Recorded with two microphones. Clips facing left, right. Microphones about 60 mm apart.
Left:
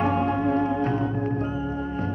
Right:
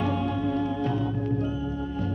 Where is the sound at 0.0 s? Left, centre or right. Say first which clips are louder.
Left 4 dB; left.